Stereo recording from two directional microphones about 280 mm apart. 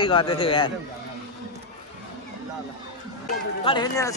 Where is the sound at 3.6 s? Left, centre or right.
Centre.